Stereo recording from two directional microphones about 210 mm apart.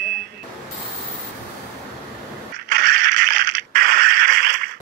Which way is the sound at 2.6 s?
40° right (ahead or behind).